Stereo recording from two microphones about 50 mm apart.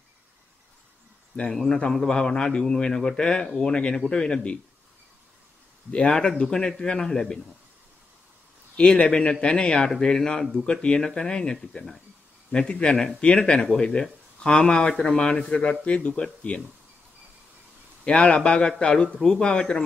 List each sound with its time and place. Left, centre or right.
1.5 s speech: centre
5.9 s speech: left
8.7 s speech: centre
15.8 s speech: left
18.0 s speech: left